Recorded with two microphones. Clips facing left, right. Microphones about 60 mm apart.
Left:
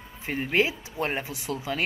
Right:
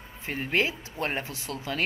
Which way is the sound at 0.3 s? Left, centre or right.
Centre.